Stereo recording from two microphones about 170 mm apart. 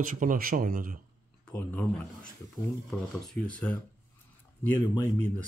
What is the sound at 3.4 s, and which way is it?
Speech, 10° left (ahead or behind).